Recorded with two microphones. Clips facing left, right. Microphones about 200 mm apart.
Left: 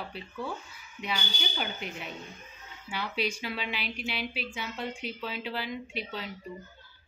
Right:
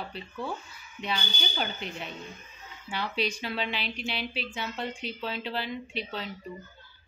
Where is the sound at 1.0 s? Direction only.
10° left (ahead or behind).